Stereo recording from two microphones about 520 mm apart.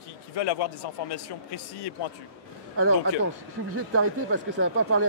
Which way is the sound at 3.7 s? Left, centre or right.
Right.